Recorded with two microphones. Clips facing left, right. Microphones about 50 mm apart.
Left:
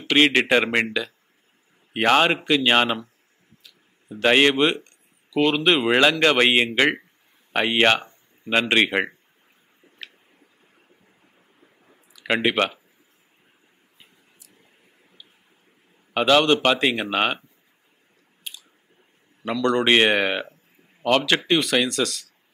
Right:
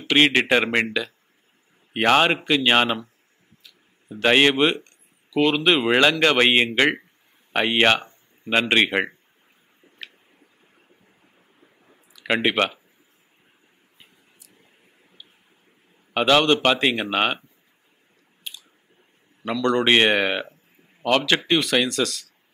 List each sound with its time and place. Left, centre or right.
0.0 s speech: centre
2.0 s speech: centre
4.1 s speech: centre
4.8 s speech: centre
11.6 s squish: centre
12.2 s speech: centre
16.1 s a man's voice: centre
19.8 s speech: centre
21.8 s speech: right